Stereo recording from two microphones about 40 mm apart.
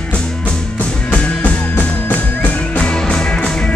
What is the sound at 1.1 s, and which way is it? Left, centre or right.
Music, left.